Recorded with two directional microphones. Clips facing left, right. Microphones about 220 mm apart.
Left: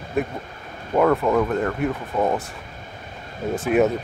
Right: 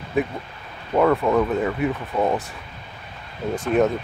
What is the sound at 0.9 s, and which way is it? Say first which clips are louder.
Speech: even; centre (ahead or behind).